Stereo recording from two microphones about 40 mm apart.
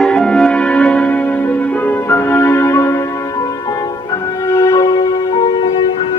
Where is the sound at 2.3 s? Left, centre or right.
Left.